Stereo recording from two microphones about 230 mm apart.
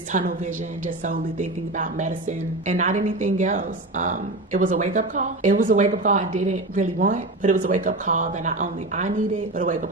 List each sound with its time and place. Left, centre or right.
0.1 s speech: right